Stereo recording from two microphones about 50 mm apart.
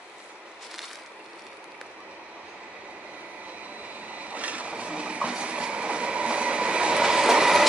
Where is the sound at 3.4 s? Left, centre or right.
Right; by 7.6 s centre.